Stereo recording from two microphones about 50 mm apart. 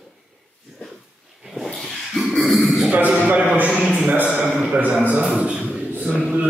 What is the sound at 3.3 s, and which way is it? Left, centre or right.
Mantra, right.